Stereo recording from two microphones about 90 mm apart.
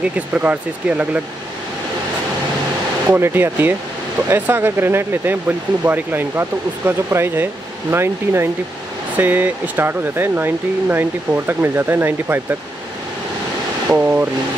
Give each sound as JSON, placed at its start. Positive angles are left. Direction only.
{"t": 0.0, "sound": "speech", "side_deg": -15}
{"t": 3.1, "sound": "speech", "side_deg": -25}
{"t": 13.8, "sound": "speech", "side_deg": -20}